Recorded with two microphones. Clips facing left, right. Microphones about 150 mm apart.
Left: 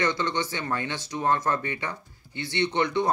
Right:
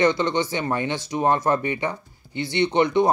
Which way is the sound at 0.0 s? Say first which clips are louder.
Right 6 dB; 15° right (ahead or behind).